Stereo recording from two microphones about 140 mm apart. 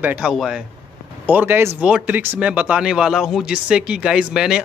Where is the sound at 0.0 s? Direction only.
10° right (ahead or behind).